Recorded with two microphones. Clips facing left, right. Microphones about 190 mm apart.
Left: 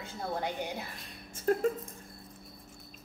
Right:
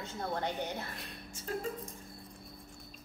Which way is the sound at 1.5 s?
55° left (ahead or behind).